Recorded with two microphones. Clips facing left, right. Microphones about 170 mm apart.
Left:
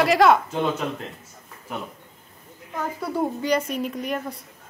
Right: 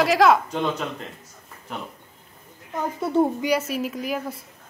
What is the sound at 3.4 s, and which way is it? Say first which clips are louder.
A woman's voice: even; 5° right (ahead or behind).